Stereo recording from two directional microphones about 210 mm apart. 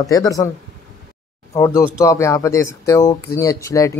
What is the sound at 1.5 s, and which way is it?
Speech, 15° left (ahead or behind).